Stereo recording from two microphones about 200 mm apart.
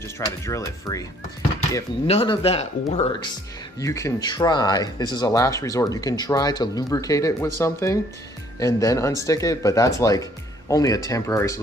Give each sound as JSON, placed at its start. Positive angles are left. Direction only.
{"t": 0.2, "sound": "speech", "side_deg": 15}
{"t": 2.0, "sound": "speech", "side_deg": 30}
{"t": 3.8, "sound": "speech", "side_deg": 15}